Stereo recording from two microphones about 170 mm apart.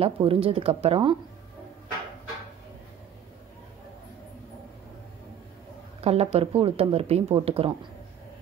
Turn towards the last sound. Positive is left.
turn(degrees=-35)  # may be behind; listen again after turning